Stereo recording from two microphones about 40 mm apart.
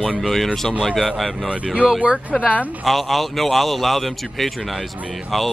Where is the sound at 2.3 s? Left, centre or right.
Centre.